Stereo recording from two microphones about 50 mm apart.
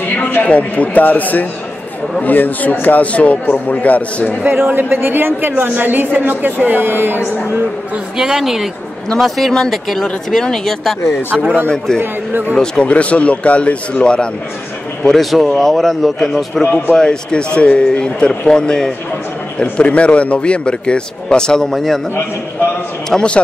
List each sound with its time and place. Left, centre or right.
0.5 s a man's voice: left
4.5 s speech: right
8.2 s speech: centre
9.1 s speech: centre
12.0 s speech: right
12.8 s a man's voice: left
15.0 s speech: centre
16.6 s speech: left
16.9 s a man's voice: centre
19.6 s a man's voice: left; by 22.0 s centre
23.0 s a man's voice: centre